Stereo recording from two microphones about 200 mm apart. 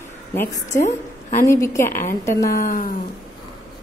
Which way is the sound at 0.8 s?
35° left (ahead or behind).